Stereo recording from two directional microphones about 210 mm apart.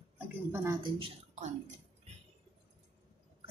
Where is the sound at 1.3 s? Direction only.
35° right (ahead or behind).